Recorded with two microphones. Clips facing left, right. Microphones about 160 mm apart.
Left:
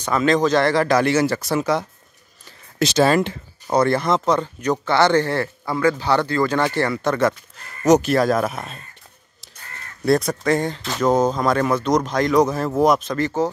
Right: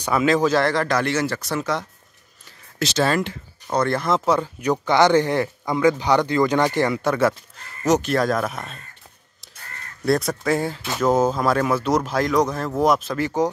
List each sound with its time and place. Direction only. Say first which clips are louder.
0.0 s speech: left 1 dB; 10° right (ahead or behind)
0.8 s speech: left 4 dB; 10° left (ahead or behind)
3.2 s speech: left 4 dB; 30° left (ahead or behind)
3.7 s speech: left 3 dB; 5° left (ahead or behind)
8.0 s speech: left 3 dB; 5° left (ahead or behind)
10.0 s speech: left 2 dB; centre (ahead or behind)